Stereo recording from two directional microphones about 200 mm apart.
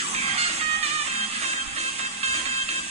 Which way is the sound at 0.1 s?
30° right (ahead or behind).